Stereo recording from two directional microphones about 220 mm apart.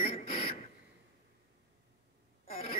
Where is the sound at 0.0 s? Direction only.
25° left (ahead or behind).